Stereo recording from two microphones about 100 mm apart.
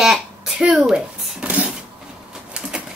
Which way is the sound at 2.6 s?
10° right (ahead or behind).